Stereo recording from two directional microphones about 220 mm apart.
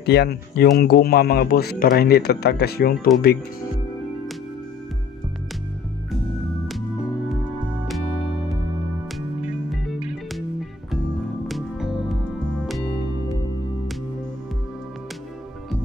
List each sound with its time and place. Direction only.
0.0 s speech: 45° left (ahead or behind)
6.7 s music: centre (ahead or behind)
9.4 s music: centre (ahead or behind)
11.4 s music: centre (ahead or behind)